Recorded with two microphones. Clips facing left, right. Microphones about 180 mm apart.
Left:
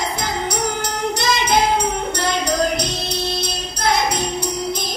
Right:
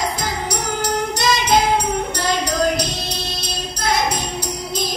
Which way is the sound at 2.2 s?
60° left (ahead or behind).